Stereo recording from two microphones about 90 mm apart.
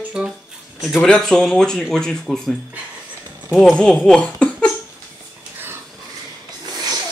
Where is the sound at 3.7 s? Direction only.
10° left (ahead or behind).